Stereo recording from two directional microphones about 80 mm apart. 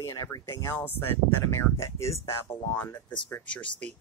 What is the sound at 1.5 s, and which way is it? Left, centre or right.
Speech, left.